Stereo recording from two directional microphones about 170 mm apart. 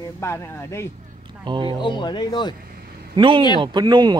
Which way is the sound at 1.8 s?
25° left (ahead or behind).